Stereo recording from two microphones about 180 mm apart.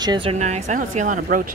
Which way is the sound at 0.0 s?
25° right (ahead or behind).